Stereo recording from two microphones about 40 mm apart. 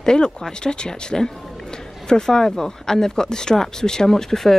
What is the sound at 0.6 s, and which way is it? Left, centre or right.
Speech, centre.